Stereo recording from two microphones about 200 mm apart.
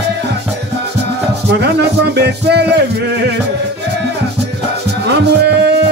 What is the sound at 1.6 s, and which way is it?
Music, 55° right (ahead or behind).